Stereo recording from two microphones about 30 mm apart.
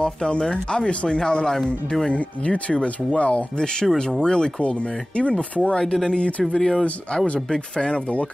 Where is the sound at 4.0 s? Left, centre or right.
Left.